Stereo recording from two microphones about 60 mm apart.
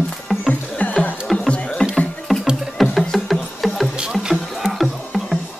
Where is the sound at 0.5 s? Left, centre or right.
Left.